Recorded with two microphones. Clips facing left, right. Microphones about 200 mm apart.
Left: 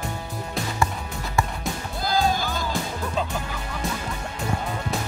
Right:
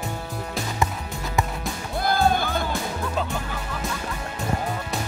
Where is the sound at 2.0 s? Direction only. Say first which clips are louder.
Right 2 dB; 60° right (ahead or behind).